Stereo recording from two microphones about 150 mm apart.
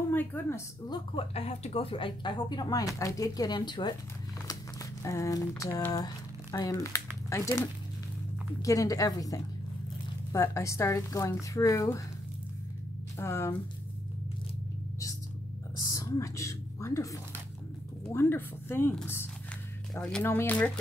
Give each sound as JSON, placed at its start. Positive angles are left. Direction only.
{"t": 0.1, "sound": "a woman's voice", "side_deg": 15}
{"t": 0.8, "sound": "a woman's voice", "side_deg": 40}
{"t": 5.0, "sound": "speech", "side_deg": 20}
{"t": 8.6, "sound": "speech", "side_deg": 20}
{"t": 13.2, "sound": "speech", "side_deg": 15}
{"t": 15.8, "sound": "whispering", "side_deg": 25}
{"t": 18.1, "sound": "speech", "side_deg": 15}